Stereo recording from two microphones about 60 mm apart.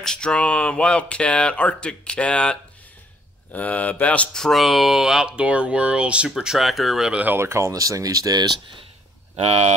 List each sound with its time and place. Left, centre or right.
0.0 s speech: centre
4.3 s speech: centre
6.3 s speech: centre
7.3 s speech: right
7.7 s speech: right